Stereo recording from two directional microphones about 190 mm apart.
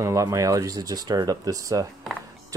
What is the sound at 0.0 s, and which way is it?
Speech, 15° right (ahead or behind).